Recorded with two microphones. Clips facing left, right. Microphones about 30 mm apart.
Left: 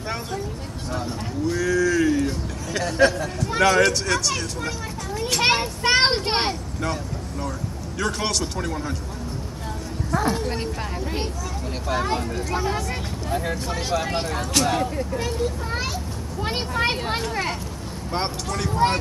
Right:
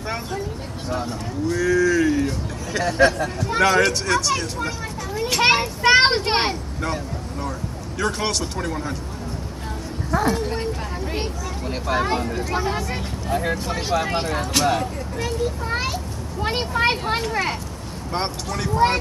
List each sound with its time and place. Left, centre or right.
1.0 s speech: centre
10.1 s speech: centre
15.2 s children playing: centre
17.1 s speech: centre